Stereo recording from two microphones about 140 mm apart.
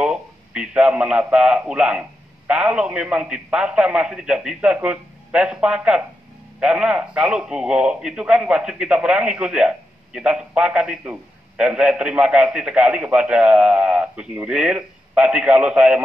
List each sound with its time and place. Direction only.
0.0 s speech: 5° right (ahead or behind)